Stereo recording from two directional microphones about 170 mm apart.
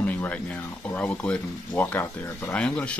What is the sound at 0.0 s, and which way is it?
Speech, 10° left (ahead or behind).